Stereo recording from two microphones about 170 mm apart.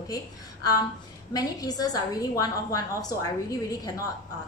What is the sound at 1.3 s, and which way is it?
A woman's voice, 20° left (ahead or behind).